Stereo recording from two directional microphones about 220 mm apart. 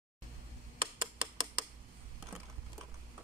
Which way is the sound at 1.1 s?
20° right (ahead or behind).